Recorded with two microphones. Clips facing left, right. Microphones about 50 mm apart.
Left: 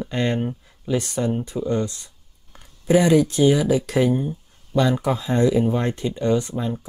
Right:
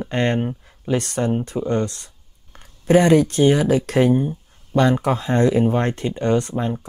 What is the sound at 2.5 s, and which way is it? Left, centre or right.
Speech, right.